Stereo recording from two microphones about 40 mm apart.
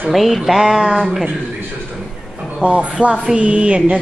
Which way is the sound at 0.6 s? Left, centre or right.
Centre.